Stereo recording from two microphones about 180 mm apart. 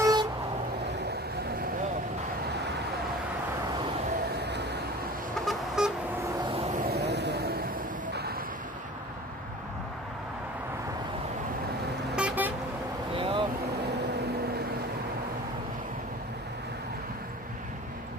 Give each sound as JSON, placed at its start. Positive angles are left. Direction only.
{"t": 0.0, "sound": "vehicle", "side_deg": -20}
{"t": 4.3, "sound": "vehicle", "side_deg": -70}
{"t": 5.4, "sound": "vehicle", "side_deg": 0}
{"t": 6.5, "sound": "vehicle", "side_deg": -35}
{"t": 6.9, "sound": "vehicle", "side_deg": -65}
{"t": 12.2, "sound": "vehicle", "side_deg": -10}
{"t": 13.1, "sound": "vehicle", "side_deg": -30}